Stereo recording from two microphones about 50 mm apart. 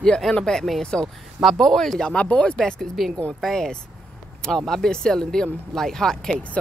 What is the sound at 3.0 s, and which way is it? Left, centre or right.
Speech, centre.